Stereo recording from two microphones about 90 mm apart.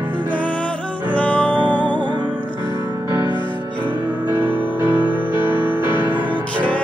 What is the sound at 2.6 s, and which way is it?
Music, 60° left (ahead or behind).